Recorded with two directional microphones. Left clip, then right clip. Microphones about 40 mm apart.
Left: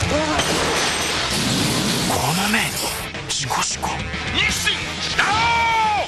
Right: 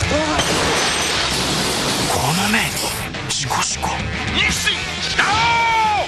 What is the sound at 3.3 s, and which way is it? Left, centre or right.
Music, left.